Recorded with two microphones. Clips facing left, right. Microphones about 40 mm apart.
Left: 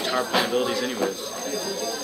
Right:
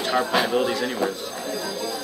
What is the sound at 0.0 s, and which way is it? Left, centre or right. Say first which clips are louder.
Speech: right 2 dB; centre.